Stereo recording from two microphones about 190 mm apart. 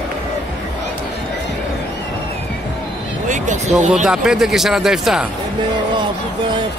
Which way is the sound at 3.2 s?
40° right (ahead or behind).